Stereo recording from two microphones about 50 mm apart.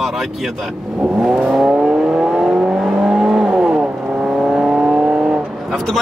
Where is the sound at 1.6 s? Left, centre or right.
Centre.